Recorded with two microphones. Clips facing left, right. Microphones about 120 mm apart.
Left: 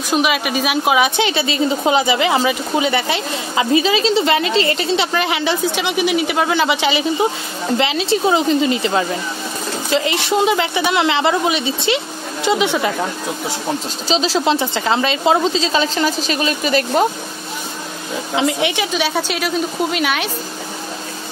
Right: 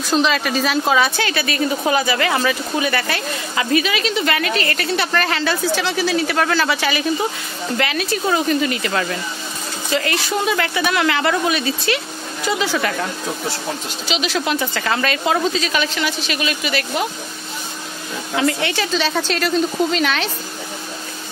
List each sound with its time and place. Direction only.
0.1 s a woman's voice: 10° left (ahead or behind)
14.0 s speech: 35° left (ahead or behind)
18.3 s a woman's voice: 15° left (ahead or behind)